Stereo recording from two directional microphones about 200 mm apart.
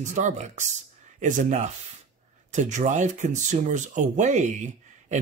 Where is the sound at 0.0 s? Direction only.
35° right (ahead or behind).